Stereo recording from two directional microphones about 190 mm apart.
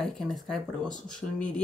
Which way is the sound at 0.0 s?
Centre (ahead or behind).